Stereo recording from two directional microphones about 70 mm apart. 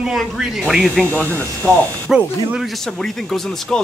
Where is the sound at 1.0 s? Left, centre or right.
Left.